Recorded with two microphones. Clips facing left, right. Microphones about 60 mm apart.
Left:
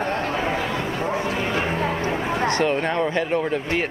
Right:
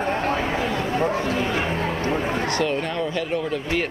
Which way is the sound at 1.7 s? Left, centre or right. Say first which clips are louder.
Left 1 dB; left.